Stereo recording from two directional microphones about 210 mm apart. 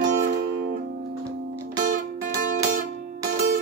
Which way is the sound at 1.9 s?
40° right (ahead or behind).